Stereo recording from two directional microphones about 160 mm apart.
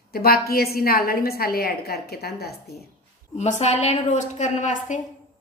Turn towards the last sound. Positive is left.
turn(degrees=50)  # may be behind; listen again after turning